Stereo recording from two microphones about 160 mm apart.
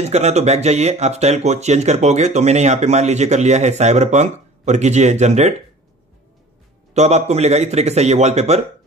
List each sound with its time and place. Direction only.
0.0 s speech: 40° right (ahead or behind)
6.9 s speech: 45° right (ahead or behind)